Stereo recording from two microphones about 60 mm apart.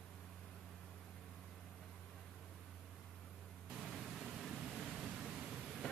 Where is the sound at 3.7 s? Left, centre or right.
Centre.